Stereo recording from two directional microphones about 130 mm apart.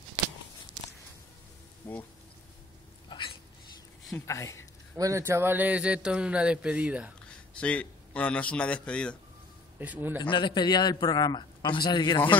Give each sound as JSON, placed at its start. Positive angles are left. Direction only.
{"t": 1.8, "sound": "speech", "side_deg": 15}
{"t": 3.1, "sound": "hiccup", "side_deg": 40}
{"t": 4.3, "sound": "speech", "side_deg": 25}
{"t": 4.9, "sound": "speech", "side_deg": -25}
{"t": 7.6, "sound": "speech", "side_deg": 10}
{"t": 9.8, "sound": "speech", "side_deg": -15}
{"t": 10.2, "sound": "a man's voice", "side_deg": 35}